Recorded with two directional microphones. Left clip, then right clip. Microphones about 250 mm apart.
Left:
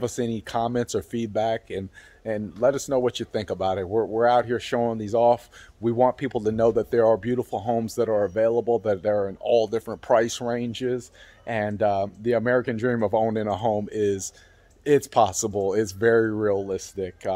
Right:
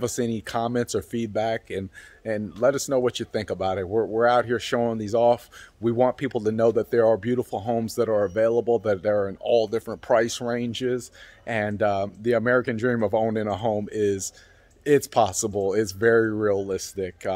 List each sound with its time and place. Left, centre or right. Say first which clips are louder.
0.0 s speech: right 1 dB; centre